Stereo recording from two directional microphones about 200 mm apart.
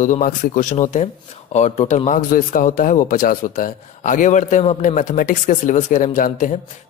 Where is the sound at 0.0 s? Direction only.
40° left (ahead or behind).